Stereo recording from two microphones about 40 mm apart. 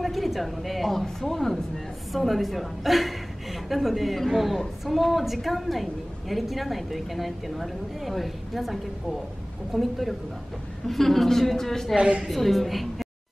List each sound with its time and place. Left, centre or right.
0.0 s a woman's voice: centre
12.0 s a woman's voice: right
12.3 s a woman's voice: centre